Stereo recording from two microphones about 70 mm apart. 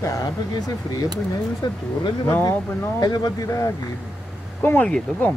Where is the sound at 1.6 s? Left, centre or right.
Left.